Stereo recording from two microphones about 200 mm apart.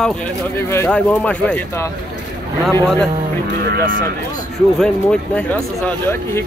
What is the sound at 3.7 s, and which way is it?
Speech, 50° right (ahead or behind).